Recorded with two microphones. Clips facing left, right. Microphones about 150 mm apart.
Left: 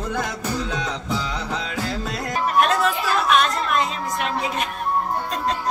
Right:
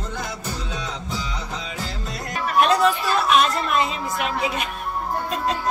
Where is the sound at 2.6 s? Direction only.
Centre (ahead or behind).